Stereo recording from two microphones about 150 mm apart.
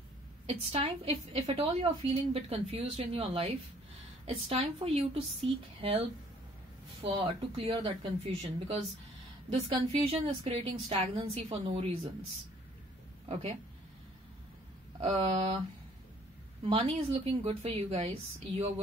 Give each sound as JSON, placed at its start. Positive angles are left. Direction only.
{"t": 0.5, "sound": "a woman's voice", "side_deg": -40}
{"t": 13.3, "sound": "a woman's voice", "side_deg": -45}
{"t": 15.0, "sound": "a woman's voice", "side_deg": -40}
{"t": 16.6, "sound": "a woman's voice", "side_deg": -35}